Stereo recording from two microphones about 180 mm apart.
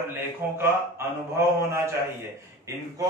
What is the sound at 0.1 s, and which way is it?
A man's voice, 15° right (ahead or behind).